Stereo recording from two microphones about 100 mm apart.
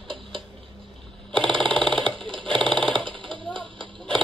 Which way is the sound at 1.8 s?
5° left (ahead or behind).